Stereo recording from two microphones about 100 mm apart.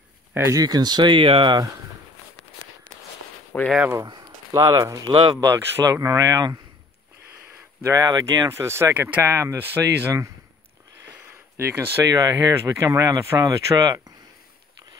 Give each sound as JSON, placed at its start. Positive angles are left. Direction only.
{"t": 0.6, "sound": "speech", "side_deg": -40}
{"t": 3.5, "sound": "speech", "side_deg": 15}
{"t": 4.1, "sound": "speech", "side_deg": -40}
{"t": 5.5, "sound": "speech", "side_deg": -30}
{"t": 8.1, "sound": "speech", "side_deg": -35}
{"t": 8.5, "sound": "speech", "side_deg": -25}
{"t": 11.5, "sound": "speech", "side_deg": -25}